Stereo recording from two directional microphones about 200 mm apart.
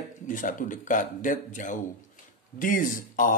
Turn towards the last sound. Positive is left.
turn(degrees=45)  # may be behind; listen again after turning